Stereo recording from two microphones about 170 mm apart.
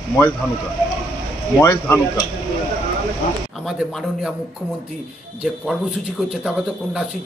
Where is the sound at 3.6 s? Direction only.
Centre (ahead or behind).